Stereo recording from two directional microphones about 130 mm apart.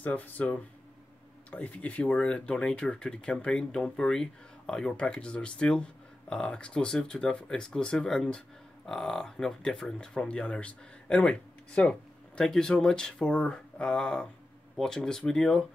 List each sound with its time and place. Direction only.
0.0 s speech: 10° left (ahead or behind)